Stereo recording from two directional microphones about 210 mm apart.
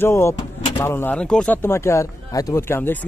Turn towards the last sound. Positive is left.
turn(degrees=10)  # may be behind; listen again after turning